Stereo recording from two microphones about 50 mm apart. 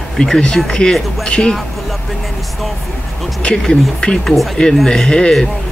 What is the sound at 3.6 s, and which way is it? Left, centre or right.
Speech, centre.